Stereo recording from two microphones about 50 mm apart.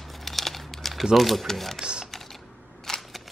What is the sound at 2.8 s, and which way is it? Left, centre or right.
Single-lens reflex camera, centre.